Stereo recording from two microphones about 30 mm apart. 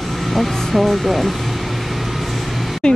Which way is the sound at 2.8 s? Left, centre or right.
Left.